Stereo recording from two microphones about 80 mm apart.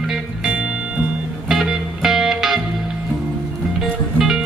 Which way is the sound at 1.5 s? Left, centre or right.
Centre.